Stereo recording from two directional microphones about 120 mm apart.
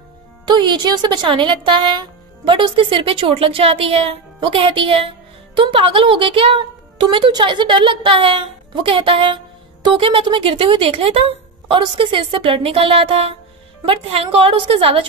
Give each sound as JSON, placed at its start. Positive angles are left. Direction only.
{"t": 0.5, "sound": "a woman's voice", "side_deg": -40}